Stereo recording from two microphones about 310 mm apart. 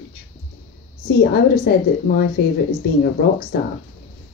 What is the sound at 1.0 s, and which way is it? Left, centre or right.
A woman's voice, left.